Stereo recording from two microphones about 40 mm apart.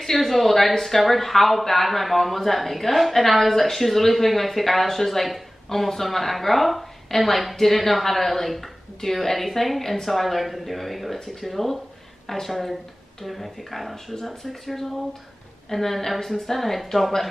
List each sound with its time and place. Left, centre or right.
0.0 s speech: centre